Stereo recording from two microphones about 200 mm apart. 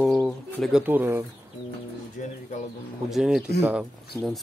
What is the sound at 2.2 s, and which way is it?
Bird, 40° left (ahead or behind).